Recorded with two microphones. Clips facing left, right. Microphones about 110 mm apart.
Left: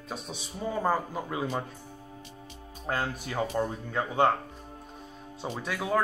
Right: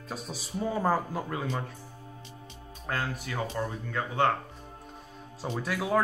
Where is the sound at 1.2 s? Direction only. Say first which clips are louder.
Left 2 dB; 10° left (ahead or behind).